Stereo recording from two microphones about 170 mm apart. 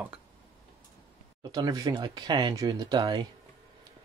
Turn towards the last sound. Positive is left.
turn(degrees=-25)  # may be behind; listen again after turning